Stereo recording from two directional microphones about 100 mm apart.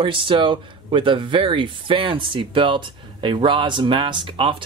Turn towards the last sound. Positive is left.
turn(degrees=-55)  # may be behind; listen again after turning